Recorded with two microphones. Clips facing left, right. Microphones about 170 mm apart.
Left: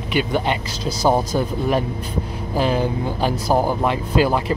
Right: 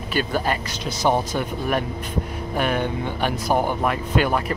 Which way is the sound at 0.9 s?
35° left (ahead or behind).